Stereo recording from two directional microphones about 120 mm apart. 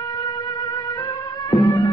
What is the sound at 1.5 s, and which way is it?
Music, 30° left (ahead or behind).